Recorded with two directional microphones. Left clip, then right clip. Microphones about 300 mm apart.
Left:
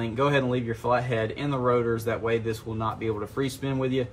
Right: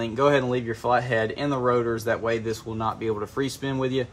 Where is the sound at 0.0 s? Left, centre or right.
Right.